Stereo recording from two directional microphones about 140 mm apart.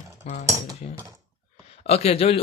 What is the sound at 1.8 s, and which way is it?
Speech, 45° left (ahead or behind).